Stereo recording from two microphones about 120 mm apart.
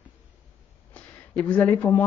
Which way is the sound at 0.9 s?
10° left (ahead or behind).